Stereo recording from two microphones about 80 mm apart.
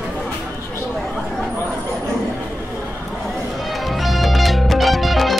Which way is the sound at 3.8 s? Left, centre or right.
Centre.